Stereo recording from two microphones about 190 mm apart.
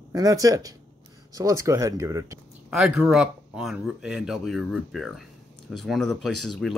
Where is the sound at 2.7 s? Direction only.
5° right (ahead or behind).